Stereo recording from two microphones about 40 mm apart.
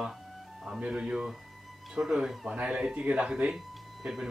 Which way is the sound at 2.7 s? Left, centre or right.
Centre.